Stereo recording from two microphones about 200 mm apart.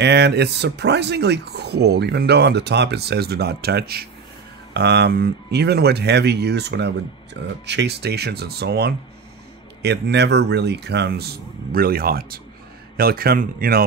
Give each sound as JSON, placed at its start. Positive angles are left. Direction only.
{"t": 0.0, "sound": "speech", "side_deg": -55}